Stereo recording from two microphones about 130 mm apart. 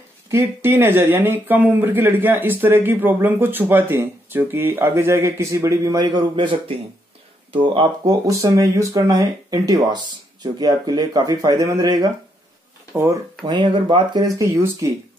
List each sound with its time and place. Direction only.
0.3 s speech: 20° right (ahead or behind)
13.5 s speech: 35° right (ahead or behind)
14.3 s speech: 20° right (ahead or behind)